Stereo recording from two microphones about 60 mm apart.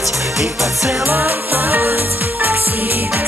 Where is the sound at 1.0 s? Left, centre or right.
Right.